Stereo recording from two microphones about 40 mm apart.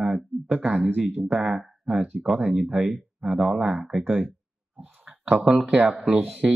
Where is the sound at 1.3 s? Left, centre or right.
Right.